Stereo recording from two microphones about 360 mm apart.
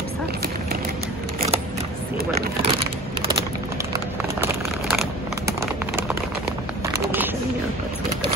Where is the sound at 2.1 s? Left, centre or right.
Right; by 5.0 s centre.